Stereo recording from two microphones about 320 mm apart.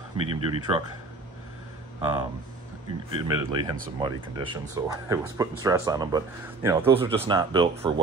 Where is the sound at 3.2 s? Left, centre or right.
Centre.